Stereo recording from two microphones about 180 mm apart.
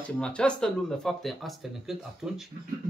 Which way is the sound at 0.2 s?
5° left (ahead or behind).